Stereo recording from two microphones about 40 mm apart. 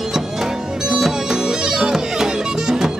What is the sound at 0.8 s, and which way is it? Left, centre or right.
Music, centre.